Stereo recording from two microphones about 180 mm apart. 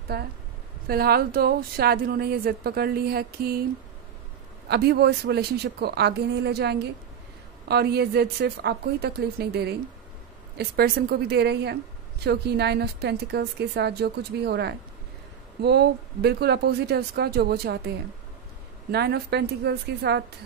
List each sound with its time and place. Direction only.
0.1 s a woman's voice: 60° right (ahead or behind)
4.6 s a woman's voice: 65° right (ahead or behind)